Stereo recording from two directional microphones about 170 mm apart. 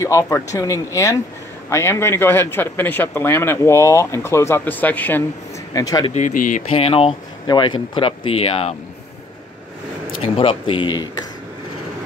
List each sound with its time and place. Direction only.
0.0 s speech: 15° left (ahead or behind)
5.7 s speech: 20° left (ahead or behind)
6.1 s speech: 50° left (ahead or behind)
6.7 s speech: 35° left (ahead or behind)
10.2 s speech: 35° left (ahead or behind)